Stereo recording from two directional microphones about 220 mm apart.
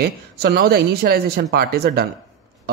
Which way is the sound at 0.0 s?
45° right (ahead or behind).